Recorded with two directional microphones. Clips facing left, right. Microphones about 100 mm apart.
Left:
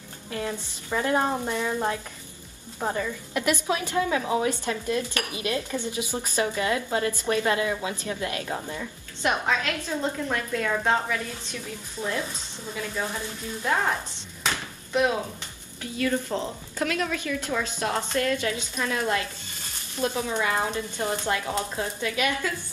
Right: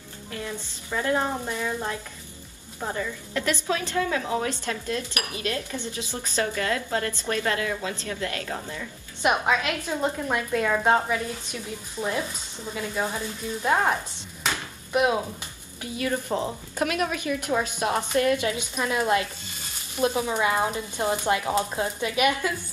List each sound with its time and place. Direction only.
0.3 s a woman's voice: 20° left (ahead or behind)
9.2 s a woman's voice: 15° right (ahead or behind)
14.4 s a sound: 15° right (ahead or behind)
15.8 s a woman's voice: 20° right (ahead or behind)